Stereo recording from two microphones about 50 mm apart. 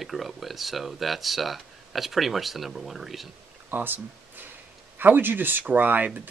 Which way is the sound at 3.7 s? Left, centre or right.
Right.